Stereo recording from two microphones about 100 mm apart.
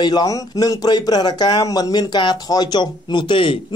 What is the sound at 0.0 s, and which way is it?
Speech, 40° left (ahead or behind).